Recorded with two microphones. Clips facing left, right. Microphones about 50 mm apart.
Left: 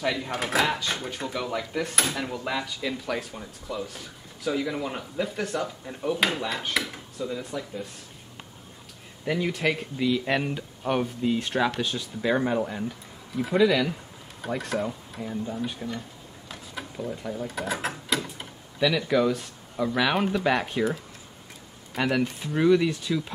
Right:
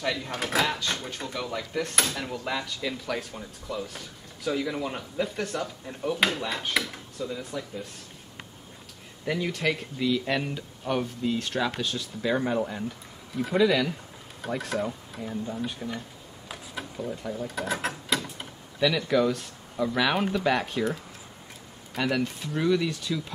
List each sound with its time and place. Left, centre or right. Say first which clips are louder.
0.0 s speech: left 2 dB; centre
9.2 s speech: left 2 dB; centre